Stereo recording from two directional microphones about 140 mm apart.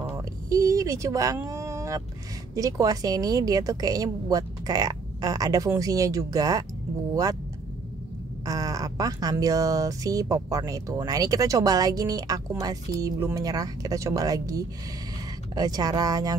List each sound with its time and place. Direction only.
0.2 s a sound: 25° right (ahead or behind)
2.5 s speech: 25° right (ahead or behind)
8.5 s speech: 25° right (ahead or behind)